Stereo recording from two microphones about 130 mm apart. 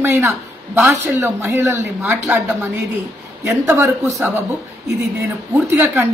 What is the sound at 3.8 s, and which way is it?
Speech, 25° right (ahead or behind).